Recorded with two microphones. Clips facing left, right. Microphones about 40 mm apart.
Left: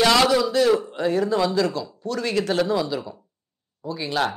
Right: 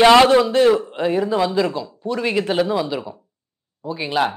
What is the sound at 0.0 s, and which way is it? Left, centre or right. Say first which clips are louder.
A man's voice: right 7 dB; right.